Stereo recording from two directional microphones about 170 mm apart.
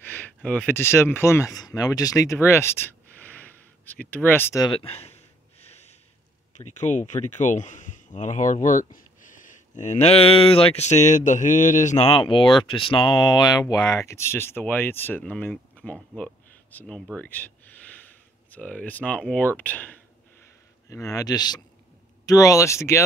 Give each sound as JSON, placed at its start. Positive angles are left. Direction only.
{"t": 0.0, "sound": "speech", "side_deg": 10}
{"t": 4.6, "sound": "speech", "side_deg": 35}
{"t": 5.6, "sound": "snort", "side_deg": 40}
{"t": 6.5, "sound": "speech", "side_deg": 45}
{"t": 12.1, "sound": "speech", "side_deg": 30}